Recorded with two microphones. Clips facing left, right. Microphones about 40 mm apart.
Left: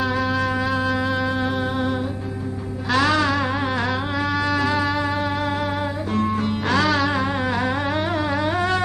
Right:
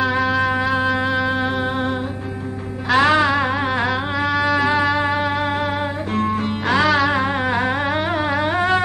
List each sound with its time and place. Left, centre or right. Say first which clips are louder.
0.4 s music: right 3 dB; right
2.9 s music: right 4 dB; right
4.3 s music: right 4 dB; centre
4.9 s music: right 3 dB; right